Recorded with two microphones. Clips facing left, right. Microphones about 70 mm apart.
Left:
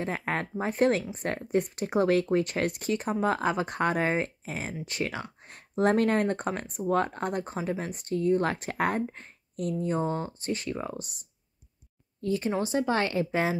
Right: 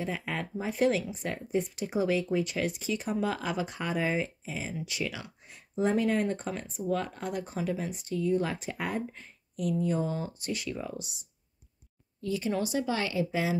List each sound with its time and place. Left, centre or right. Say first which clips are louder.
0.0 s a woman's voice: left 3 dB; left
7.5 s a woman's voice: left 1 dB; left